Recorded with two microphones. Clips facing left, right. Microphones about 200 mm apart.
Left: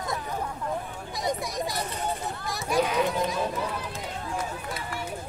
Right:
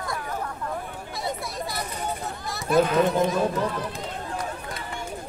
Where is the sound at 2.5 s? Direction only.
15° left (ahead or behind).